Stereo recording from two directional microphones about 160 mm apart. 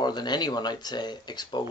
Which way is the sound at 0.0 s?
25° left (ahead or behind).